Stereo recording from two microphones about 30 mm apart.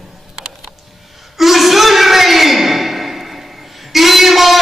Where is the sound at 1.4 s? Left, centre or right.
Centre.